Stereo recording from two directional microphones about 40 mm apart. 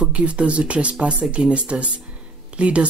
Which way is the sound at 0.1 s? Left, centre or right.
Right.